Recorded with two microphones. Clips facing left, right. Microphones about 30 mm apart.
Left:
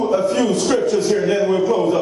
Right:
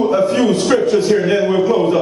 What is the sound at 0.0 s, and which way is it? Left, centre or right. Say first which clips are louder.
A man's voice: right 3 dB; right.